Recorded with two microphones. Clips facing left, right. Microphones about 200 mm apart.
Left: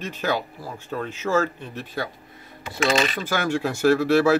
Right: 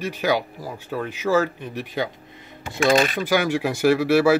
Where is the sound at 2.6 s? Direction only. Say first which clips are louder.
Right 4 dB; 50° right (ahead or behind).